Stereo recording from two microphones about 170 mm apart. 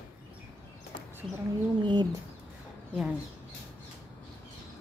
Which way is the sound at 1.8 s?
25° right (ahead or behind).